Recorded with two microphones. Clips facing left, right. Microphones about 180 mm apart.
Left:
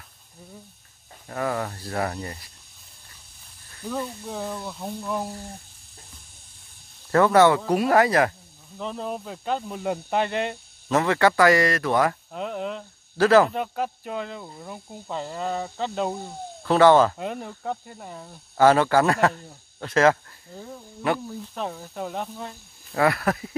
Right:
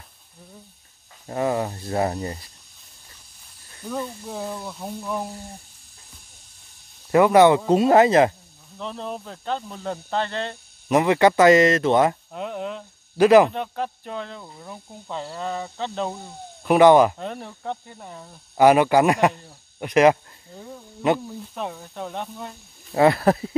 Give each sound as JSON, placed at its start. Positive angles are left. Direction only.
{"t": 1.2, "sound": "speech", "side_deg": -25}
{"t": 3.8, "sound": "speech", "side_deg": 0}
{"t": 7.1, "sound": "speech", "side_deg": -15}
{"t": 8.7, "sound": "speech", "side_deg": 5}
{"t": 10.9, "sound": "speech", "side_deg": -15}
{"t": 12.3, "sound": "speech", "side_deg": 0}
{"t": 13.2, "sound": "speech", "side_deg": -15}
{"t": 13.5, "sound": "speech", "side_deg": 5}
{"t": 16.6, "sound": "speech", "side_deg": -15}
{"t": 17.2, "sound": "speech", "side_deg": 0}
{"t": 18.6, "sound": "speech", "side_deg": -15}
{"t": 20.5, "sound": "speech", "side_deg": 0}
{"t": 22.9, "sound": "speech", "side_deg": -25}